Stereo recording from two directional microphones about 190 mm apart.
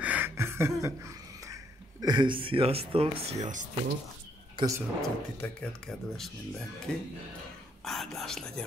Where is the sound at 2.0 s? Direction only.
25° right (ahead or behind); by 3.6 s 40° right (ahead or behind).